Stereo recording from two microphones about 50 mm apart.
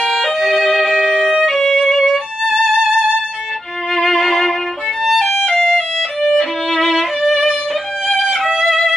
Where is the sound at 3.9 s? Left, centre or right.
Centre.